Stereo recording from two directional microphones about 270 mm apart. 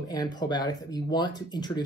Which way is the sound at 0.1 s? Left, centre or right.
Centre.